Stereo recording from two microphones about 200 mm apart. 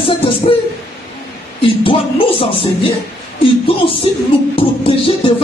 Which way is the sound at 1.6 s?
25° left (ahead or behind).